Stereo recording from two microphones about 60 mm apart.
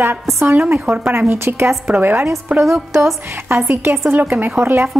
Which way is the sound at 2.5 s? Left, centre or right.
Centre.